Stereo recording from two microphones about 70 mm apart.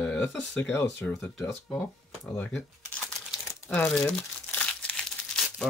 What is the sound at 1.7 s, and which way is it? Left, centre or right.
Speech, centre.